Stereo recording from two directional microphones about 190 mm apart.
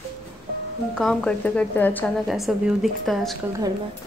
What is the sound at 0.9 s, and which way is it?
A woman's voice, 5° left (ahead or behind).